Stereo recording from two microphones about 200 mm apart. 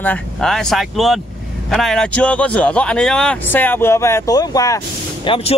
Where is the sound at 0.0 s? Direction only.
5° left (ahead or behind).